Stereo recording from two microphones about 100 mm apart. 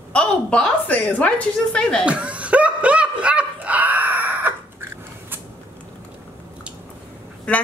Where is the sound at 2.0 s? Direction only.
10° right (ahead or behind).